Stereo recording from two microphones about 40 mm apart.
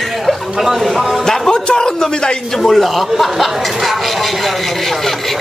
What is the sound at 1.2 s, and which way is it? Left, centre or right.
Music, centre.